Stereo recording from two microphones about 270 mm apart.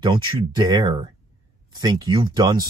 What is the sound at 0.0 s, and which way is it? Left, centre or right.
Speech, centre.